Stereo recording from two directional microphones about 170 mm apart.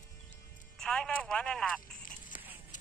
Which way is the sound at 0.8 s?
5° left (ahead or behind).